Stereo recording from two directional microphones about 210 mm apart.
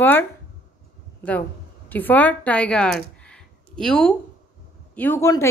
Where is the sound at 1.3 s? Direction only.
10° left (ahead or behind).